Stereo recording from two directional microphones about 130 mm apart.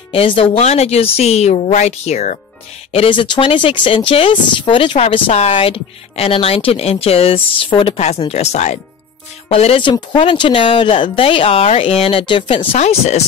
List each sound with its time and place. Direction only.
0.1 s a woman's voice: 45° left (ahead or behind); by 2.3 s 60° left (ahead or behind)
2.9 s speech: 45° left (ahead or behind)
8.0 s a woman's voice: 55° left (ahead or behind)
12.7 s a woman's voice: 60° left (ahead or behind)